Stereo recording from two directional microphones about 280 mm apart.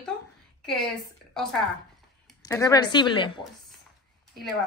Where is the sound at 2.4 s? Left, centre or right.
Centre.